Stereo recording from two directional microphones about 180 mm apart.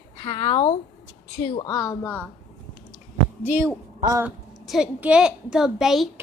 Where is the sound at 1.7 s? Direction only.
20° left (ahead or behind).